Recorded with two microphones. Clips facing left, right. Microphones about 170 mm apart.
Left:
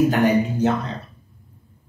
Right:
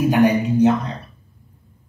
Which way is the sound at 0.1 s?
15° right (ahead or behind).